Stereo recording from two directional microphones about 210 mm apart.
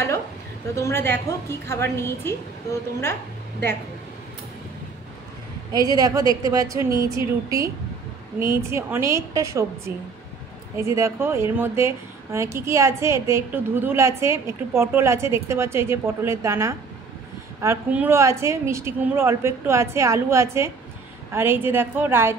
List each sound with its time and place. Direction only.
0.7 s a woman's voice: 10° left (ahead or behind)
5.7 s a woman's voice: 15° right (ahead or behind)